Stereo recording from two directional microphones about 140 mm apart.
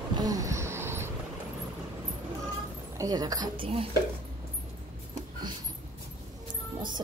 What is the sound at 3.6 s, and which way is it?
Speech, 40° right (ahead or behind).